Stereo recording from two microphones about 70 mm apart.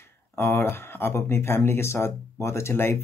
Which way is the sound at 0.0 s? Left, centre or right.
Left.